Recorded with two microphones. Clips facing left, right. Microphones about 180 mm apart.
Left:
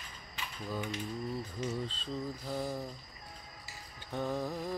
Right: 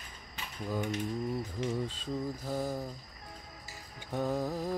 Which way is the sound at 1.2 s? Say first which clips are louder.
Right 3 dB; 15° right (ahead or behind).